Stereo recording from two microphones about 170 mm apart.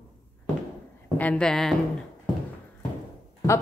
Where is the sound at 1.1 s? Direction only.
10° left (ahead or behind).